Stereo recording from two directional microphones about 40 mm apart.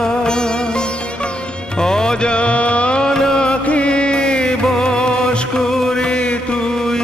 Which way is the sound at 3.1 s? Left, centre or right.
Centre.